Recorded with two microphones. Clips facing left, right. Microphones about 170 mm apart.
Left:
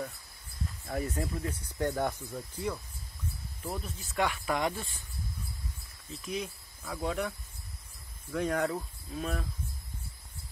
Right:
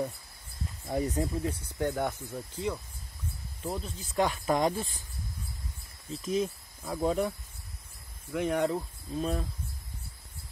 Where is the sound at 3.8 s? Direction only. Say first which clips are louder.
Right 3 dB; 30° right (ahead or behind).